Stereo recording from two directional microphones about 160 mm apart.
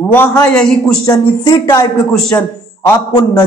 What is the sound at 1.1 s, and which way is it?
A man's voice, 20° left (ahead or behind).